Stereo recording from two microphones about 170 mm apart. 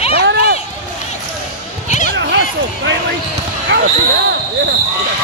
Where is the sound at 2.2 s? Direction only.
90° right.